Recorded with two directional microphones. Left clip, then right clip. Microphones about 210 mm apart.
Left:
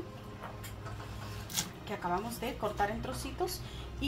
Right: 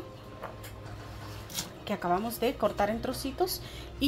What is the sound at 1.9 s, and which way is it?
A woman's voice, 55° right (ahead or behind).